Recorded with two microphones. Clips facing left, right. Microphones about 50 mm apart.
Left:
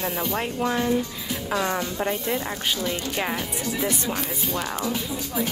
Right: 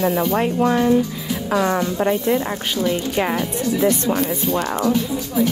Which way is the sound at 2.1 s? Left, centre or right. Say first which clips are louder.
Right 7 dB; right.